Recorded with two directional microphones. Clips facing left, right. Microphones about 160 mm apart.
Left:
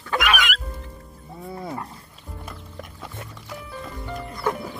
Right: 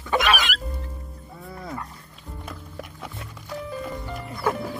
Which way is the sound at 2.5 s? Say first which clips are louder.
Right 3 dB; 5° right (ahead or behind).